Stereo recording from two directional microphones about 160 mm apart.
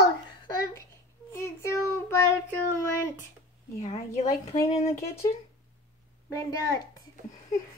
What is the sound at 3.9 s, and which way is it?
Speech, 45° left (ahead or behind).